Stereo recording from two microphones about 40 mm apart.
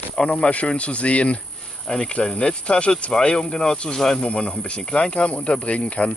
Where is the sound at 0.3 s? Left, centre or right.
Left.